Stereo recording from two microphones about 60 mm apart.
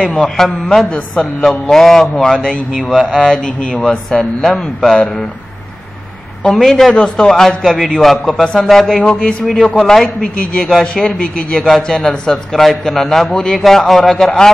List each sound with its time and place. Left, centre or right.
0.4 s a man's voice: centre
6.4 s a man's voice: centre
9.1 s a man's voice: centre
9.4 s a man's voice: centre
9.7 s a man's voice: centre
9.9 s a man's voice: centre